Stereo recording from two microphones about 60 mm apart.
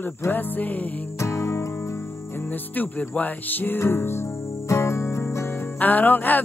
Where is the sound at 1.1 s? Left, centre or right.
Left.